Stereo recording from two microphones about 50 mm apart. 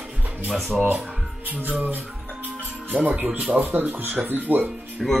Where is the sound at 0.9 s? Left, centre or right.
Right.